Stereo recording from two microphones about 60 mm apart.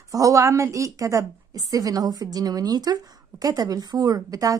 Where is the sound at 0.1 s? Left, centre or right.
Right.